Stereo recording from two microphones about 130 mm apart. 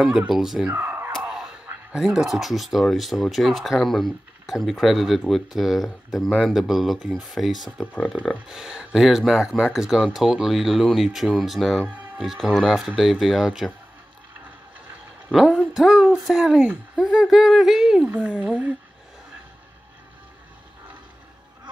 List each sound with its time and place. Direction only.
0.0 s speech: 5° right (ahead or behind)
0.7 s a sound: 20° right (ahead or behind)
1.1 s a sound: 5° right (ahead or behind)
1.9 s speech: 5° right (ahead or behind)
7.8 s speech: 15° left (ahead or behind)
8.5 s speech: 5° right (ahead or behind)
15.2 s speech: 5° right (ahead or behind)